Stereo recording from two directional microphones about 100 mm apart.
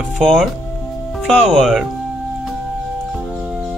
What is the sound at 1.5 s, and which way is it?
Speech, centre (ahead or behind).